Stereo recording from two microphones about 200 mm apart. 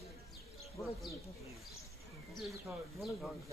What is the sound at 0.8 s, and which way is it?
Speech, 15° left (ahead or behind).